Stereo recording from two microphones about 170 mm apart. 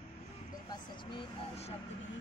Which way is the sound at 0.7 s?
30° left (ahead or behind).